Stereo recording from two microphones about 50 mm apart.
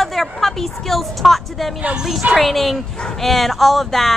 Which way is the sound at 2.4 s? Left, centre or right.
Centre.